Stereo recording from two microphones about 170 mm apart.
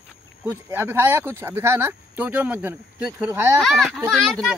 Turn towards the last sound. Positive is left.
turn(degrees=0)  # may be behind; listen again after turning